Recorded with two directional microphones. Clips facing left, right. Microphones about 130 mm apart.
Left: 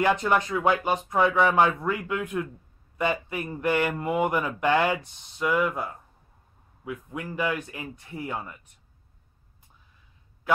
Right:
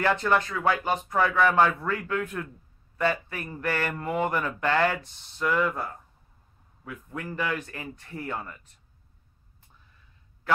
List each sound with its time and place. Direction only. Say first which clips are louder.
0.0 s speech: left 1 dB; 15° left (ahead or behind)